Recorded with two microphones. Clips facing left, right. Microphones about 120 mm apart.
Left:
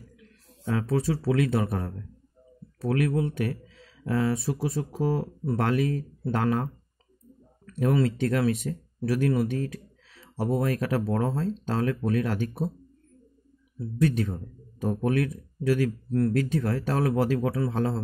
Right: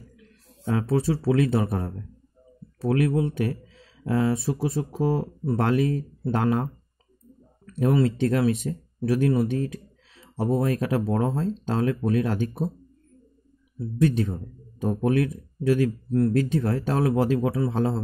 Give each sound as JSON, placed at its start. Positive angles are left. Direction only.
{"t": 0.7, "sound": "speech", "side_deg": -30}
{"t": 13.9, "sound": "speech", "side_deg": -25}